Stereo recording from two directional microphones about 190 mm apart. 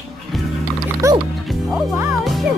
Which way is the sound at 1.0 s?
15° right (ahead or behind).